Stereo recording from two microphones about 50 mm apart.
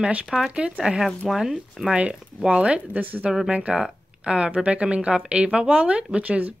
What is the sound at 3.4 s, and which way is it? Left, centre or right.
Speech, centre.